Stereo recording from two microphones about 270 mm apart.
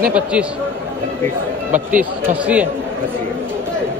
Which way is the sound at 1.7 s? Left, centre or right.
Centre.